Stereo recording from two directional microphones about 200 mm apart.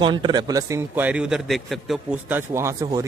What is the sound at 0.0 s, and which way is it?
Speech, 25° right (ahead or behind).